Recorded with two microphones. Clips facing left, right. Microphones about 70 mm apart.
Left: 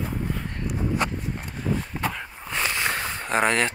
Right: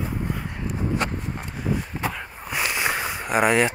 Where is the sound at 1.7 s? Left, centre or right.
Centre.